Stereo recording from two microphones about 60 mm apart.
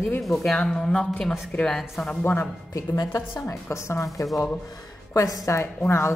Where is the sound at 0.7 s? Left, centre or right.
Centre.